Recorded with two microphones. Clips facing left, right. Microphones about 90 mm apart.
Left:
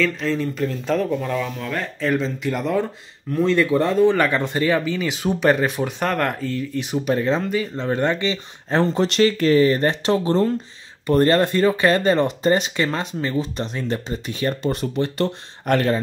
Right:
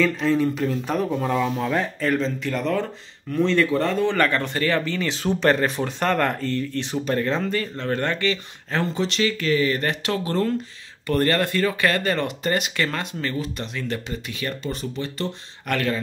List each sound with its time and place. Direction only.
0.0 s speech: 15° right (ahead or behind)
1.8 s speech: centre (ahead or behind); by 8.4 s 20° left (ahead or behind)
8.9 s speech: 50° left (ahead or behind)
14.6 s speech: 55° left (ahead or behind); by 16.0 s 35° left (ahead or behind)